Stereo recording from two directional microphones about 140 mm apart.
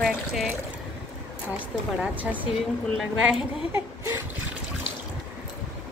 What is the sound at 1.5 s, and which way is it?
A woman's voice, 10° right (ahead or behind).